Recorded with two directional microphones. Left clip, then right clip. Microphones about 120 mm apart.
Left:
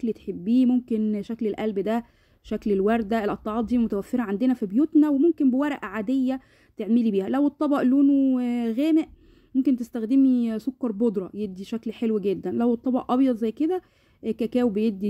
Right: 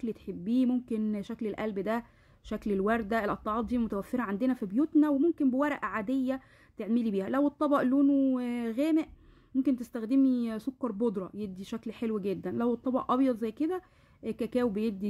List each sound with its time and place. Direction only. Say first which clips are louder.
0.0 s speech: left 8 dB; 25° left (ahead or behind)